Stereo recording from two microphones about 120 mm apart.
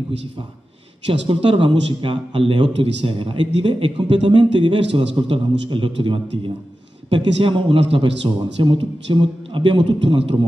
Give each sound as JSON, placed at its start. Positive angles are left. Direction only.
{"t": 1.2, "sound": "a man's voice", "side_deg": -45}